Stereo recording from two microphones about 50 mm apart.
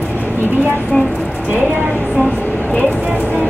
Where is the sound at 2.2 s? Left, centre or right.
Left.